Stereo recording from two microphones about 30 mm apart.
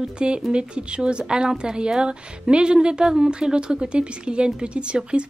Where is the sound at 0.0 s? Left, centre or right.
Right.